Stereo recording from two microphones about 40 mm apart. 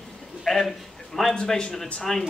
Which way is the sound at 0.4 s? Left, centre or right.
Centre.